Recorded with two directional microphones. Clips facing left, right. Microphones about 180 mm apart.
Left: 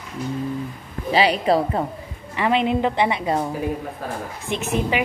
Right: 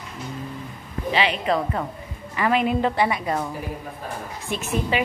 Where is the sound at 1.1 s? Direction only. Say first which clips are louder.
Left 5 dB; 35° left (ahead or behind).